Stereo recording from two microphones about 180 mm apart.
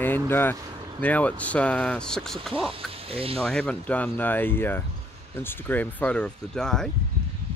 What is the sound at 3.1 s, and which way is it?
Speech, 30° right (ahead or behind).